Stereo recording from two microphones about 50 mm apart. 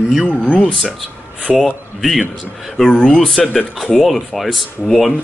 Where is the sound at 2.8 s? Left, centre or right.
Centre.